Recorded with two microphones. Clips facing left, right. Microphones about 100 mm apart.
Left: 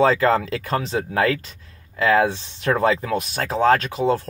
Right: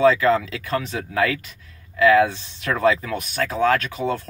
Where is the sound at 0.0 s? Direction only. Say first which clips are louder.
Even; 35° left (ahead or behind).